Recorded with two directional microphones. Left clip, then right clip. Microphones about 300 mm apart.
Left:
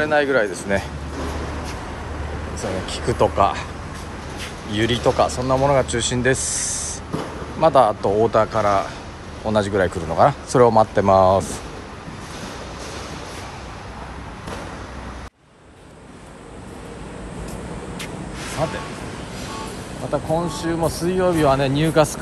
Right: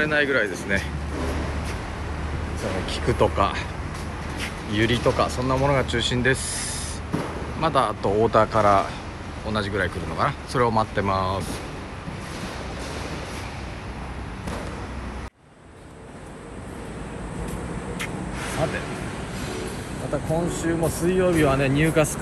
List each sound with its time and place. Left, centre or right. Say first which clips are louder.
0.0 s speech: left 3 dB; centre
2.9 s speech: left 3 dB; centre
4.7 s a man's voice: left 3 dB; centre
9.5 s speech: left 7 dB; centre
20.6 s speech: left 2 dB; centre
21.5 s speech: left 2 dB; left
21.8 s speech: left 6 dB; centre